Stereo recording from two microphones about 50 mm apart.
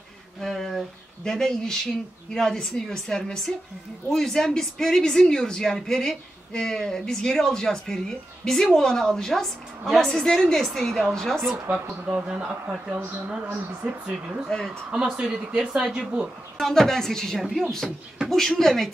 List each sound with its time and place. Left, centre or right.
0.4 s speech: centre
11.7 s speech: right
13.8 s speech: right
14.5 s speech: centre
14.9 s speech: centre
16.5 s speech: centre